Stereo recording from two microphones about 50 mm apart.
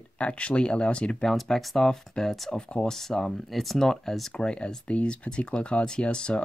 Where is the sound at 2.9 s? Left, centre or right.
Centre.